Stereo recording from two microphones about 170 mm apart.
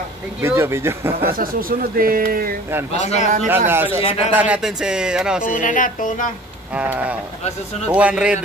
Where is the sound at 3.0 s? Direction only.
40° left (ahead or behind).